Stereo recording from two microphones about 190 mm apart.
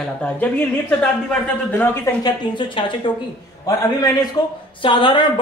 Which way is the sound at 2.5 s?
25° left (ahead or behind).